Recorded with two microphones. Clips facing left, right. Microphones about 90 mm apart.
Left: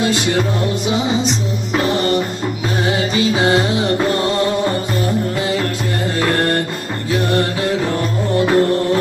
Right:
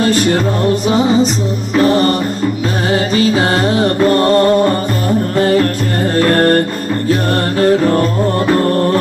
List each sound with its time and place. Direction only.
0.0 s music: 45° right (ahead or behind)
6.3 s music: 45° right (ahead or behind)